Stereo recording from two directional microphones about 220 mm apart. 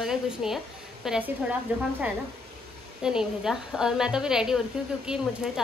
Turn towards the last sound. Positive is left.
turn(degrees=-5)  # may be behind; listen again after turning